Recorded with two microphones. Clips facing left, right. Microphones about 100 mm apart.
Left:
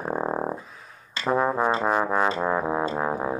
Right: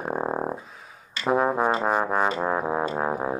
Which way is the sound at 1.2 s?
5° right (ahead or behind).